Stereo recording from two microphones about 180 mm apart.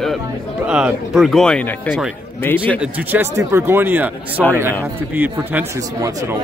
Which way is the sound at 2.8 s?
10° right (ahead or behind).